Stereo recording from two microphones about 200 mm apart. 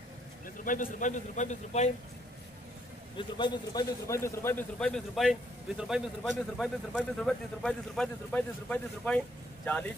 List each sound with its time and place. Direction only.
0.7 s a man's voice: 40° left (ahead or behind)
3.2 s a man's voice: 20° left (ahead or behind); by 9.9 s 5° left (ahead or behind)